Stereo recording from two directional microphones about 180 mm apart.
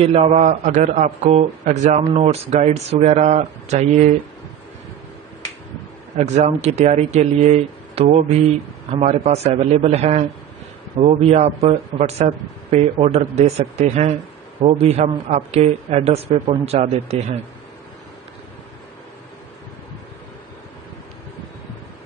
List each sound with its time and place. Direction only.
0.0 s a man's voice: 35° right (ahead or behind)
6.1 s a man's voice: 40° right (ahead or behind)